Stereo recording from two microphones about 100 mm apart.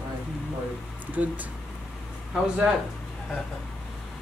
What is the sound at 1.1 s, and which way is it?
Speech, 15° right (ahead or behind).